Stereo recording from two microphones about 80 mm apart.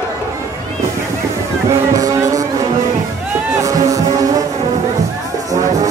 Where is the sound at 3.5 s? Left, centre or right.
Right.